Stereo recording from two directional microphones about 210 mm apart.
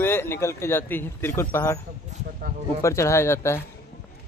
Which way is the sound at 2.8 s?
15° left (ahead or behind).